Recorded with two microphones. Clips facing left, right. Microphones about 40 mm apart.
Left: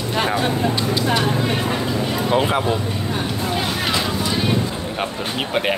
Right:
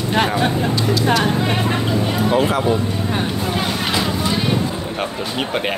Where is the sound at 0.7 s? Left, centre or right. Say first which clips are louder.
Right 2 dB; left.